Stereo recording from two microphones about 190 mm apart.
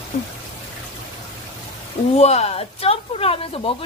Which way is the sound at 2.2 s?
35° left (ahead or behind).